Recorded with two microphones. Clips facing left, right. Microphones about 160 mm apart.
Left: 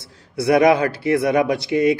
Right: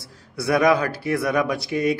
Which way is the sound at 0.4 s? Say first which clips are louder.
Left 4 dB; 25° left (ahead or behind).